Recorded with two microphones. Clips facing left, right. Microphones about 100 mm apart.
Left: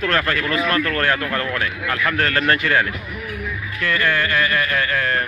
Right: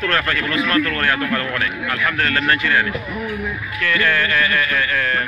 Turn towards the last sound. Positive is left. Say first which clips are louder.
# even
turn(degrees=25)  # may be behind; listen again after turning